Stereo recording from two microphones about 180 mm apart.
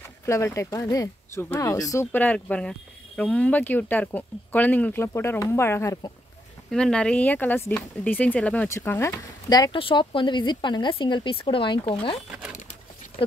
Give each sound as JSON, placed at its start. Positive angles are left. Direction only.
{"t": 0.2, "sound": "speech", "side_deg": 15}
{"t": 6.7, "sound": "speech", "side_deg": 5}
{"t": 12.3, "sound": "pigeon", "side_deg": -5}